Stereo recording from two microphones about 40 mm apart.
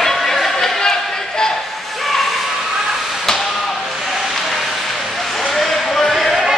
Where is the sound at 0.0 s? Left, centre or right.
Centre.